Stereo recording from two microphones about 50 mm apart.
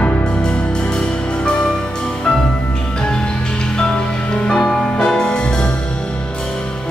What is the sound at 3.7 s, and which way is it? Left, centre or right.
Music, centre.